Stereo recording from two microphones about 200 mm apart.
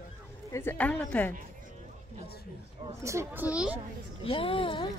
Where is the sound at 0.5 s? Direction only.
10° left (ahead or behind).